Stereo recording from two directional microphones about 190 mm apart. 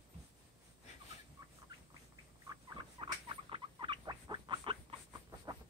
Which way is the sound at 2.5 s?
25° right (ahead or behind).